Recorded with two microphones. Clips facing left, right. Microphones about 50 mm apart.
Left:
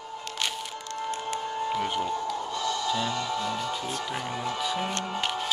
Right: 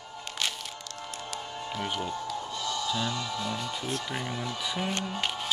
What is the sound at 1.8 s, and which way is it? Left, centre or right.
Speech, centre.